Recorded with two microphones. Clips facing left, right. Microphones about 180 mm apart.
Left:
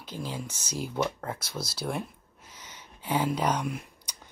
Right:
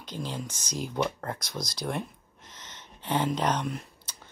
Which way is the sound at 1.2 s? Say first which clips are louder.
Even; 5° left (ahead or behind).